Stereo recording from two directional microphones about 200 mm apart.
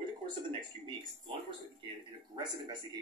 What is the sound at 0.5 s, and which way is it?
Speech, 25° right (ahead or behind).